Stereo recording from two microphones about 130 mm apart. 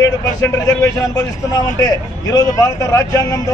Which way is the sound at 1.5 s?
30° left (ahead or behind).